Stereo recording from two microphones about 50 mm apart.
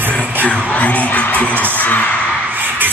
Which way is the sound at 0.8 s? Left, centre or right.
Left.